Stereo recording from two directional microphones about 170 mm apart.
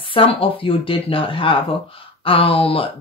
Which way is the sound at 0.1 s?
35° left (ahead or behind).